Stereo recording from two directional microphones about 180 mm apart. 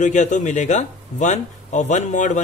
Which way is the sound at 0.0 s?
45° left (ahead or behind).